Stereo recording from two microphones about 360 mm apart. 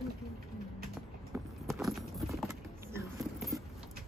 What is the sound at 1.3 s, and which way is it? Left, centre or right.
Keys jangling, centre.